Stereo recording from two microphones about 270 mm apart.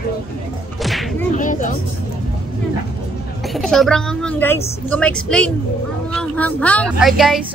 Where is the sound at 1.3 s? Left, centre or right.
Left.